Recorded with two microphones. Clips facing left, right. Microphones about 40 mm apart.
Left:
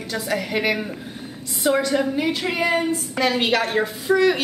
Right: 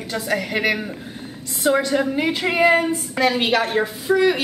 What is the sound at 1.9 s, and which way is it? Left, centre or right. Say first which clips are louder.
Speech: right 1 dB; centre.